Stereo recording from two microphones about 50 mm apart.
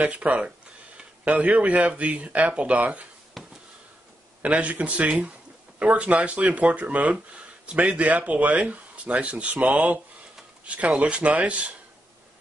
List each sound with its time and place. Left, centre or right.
0.0 s speech: right
3.4 s a sound: centre
4.4 s speech: right